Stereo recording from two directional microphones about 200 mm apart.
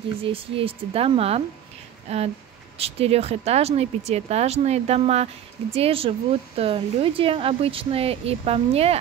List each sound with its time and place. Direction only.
0.2 s speech: 25° right (ahead or behind)